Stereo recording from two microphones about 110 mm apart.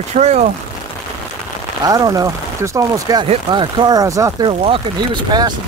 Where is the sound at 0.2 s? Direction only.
85° right.